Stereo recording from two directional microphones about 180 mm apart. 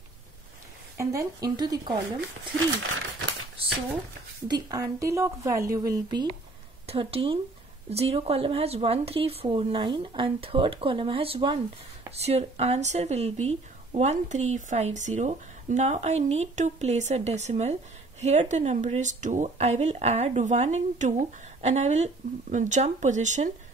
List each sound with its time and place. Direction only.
0.9 s a woman's voice: 20° right (ahead or behind)
4.5 s a woman's voice: 20° right (ahead or behind); by 23.5 s 40° right (ahead or behind)